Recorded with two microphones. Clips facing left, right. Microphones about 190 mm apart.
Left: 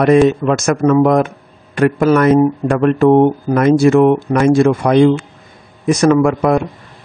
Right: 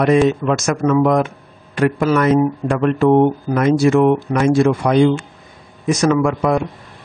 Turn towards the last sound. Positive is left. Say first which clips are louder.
# left 4 dB
turn(degrees=55)  # may be behind; listen again after turning